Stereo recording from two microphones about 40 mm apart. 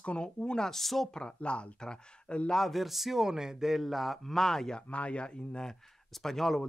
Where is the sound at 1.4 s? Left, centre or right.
Left.